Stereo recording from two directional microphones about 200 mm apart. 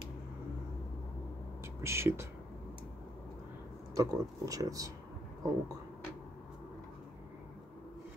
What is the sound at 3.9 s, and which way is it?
Speech, 15° right (ahead or behind).